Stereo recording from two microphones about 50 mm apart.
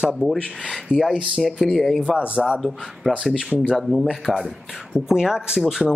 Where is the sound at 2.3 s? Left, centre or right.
Right.